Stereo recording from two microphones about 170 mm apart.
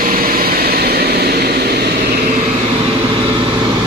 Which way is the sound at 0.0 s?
55° right (ahead or behind).